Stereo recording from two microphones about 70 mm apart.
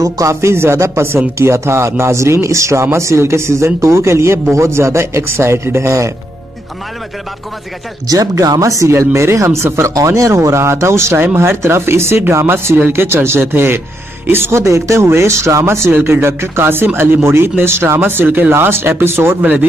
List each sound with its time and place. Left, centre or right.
0.0 s speech: right
8.1 s speech: right